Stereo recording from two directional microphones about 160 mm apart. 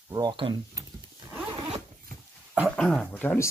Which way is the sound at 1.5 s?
35° right (ahead or behind).